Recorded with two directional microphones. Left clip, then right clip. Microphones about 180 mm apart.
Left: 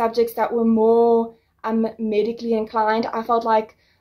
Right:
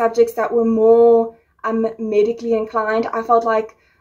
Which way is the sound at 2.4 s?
25° left (ahead or behind).